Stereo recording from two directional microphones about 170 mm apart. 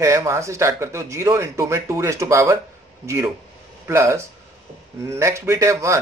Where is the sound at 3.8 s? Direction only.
15° right (ahead or behind).